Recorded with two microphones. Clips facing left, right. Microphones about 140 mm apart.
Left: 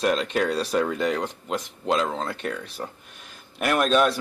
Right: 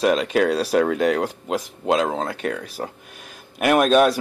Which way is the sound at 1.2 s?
10° right (ahead or behind).